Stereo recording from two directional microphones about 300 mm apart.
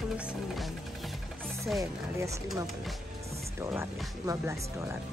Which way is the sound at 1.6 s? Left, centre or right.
Centre.